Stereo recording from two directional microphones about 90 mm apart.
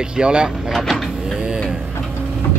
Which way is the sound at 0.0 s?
10° right (ahead or behind).